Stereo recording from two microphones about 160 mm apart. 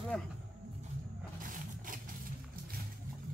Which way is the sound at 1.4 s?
60° right (ahead or behind).